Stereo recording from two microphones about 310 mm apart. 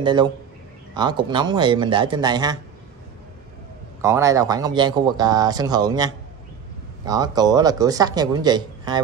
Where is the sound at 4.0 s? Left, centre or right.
Centre.